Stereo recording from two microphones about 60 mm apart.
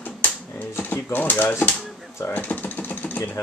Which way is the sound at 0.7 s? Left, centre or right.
Left.